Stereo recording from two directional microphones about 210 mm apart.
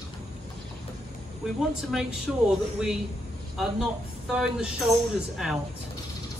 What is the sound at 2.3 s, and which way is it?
Speech, centre (ahead or behind).